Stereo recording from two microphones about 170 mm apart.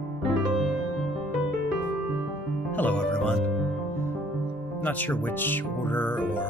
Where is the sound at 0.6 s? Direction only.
5° left (ahead or behind).